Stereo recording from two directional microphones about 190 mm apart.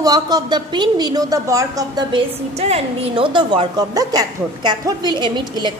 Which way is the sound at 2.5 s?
35° right (ahead or behind).